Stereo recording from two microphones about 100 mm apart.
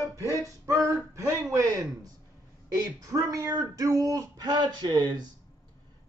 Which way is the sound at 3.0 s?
35° right (ahead or behind).